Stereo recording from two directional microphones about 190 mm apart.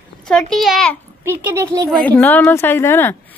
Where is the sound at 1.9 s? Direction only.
10° left (ahead or behind).